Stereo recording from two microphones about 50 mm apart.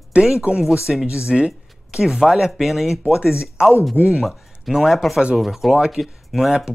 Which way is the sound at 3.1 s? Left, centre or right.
Centre.